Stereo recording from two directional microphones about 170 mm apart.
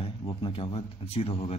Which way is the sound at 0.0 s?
30° left (ahead or behind).